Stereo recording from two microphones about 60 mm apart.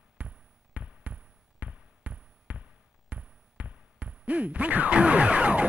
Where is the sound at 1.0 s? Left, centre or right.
Right.